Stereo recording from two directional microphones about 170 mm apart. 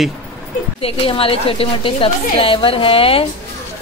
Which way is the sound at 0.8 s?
35° left (ahead or behind).